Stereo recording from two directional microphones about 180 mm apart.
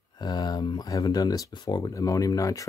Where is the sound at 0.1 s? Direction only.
25° left (ahead or behind).